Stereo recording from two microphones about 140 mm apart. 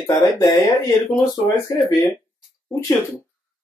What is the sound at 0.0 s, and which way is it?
Speech, 25° left (ahead or behind).